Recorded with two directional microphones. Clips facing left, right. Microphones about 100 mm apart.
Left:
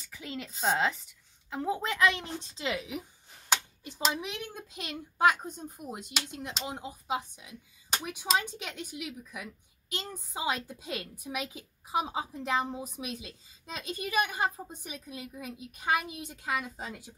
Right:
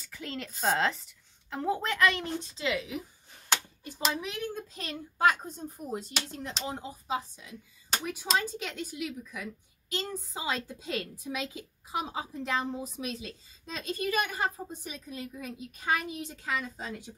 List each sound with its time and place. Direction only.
0.1 s a woman's voice: 10° left (ahead or behind)
4.1 s a woman's voice: 20° left (ahead or behind)